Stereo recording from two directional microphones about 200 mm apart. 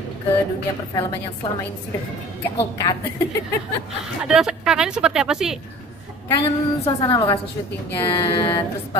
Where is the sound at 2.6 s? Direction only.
20° left (ahead or behind).